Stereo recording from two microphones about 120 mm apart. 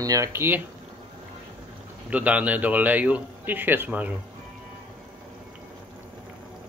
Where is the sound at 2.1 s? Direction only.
10° right (ahead or behind).